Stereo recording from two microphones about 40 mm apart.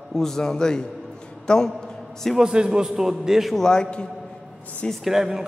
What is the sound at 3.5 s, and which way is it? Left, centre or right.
Speech, centre.